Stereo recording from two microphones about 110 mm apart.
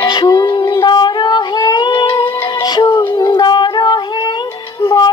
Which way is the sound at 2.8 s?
40° left (ahead or behind).